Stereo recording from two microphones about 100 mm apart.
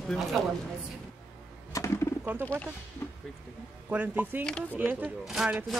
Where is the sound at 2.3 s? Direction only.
20° right (ahead or behind).